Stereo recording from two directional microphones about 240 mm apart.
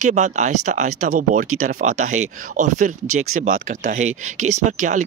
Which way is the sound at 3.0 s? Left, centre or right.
Right.